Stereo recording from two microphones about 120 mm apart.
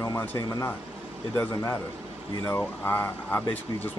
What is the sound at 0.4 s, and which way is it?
Speech, 25° left (ahead or behind).